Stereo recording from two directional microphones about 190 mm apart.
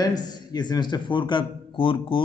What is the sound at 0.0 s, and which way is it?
A man's voice, 20° left (ahead or behind).